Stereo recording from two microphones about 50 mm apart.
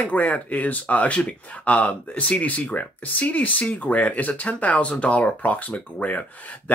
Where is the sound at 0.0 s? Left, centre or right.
Left.